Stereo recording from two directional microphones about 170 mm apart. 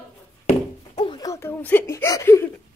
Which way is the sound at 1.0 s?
25° left (ahead or behind).